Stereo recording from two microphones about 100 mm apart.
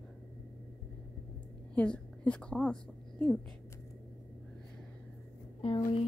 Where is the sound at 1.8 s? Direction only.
10° left (ahead or behind).